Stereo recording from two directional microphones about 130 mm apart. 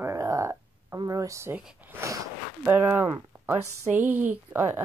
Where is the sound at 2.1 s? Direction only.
25° right (ahead or behind).